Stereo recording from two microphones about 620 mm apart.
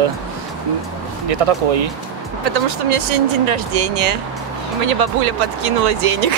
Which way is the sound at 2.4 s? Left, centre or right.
Right.